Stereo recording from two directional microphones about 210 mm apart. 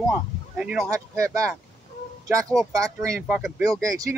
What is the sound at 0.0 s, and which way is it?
Speech, centre (ahead or behind).